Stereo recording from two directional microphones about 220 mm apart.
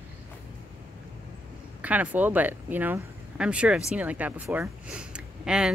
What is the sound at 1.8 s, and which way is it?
Speech, 5° right (ahead or behind).